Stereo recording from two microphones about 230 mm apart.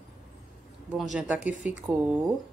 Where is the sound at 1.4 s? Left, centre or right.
Left.